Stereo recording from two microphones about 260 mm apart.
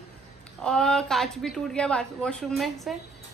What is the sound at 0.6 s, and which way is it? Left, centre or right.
Speech, centre.